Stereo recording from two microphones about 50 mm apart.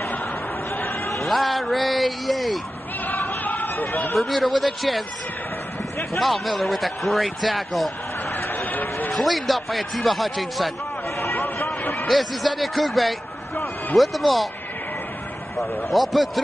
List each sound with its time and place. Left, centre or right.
1.1 s speech: centre
3.1 s a sound: left
4.1 s speech: centre
6.1 s speech: centre
8.3 s chatter: left
9.1 s speech: centre
11.3 s a sound: left
12.1 s speech: centre
15.9 s speech: centre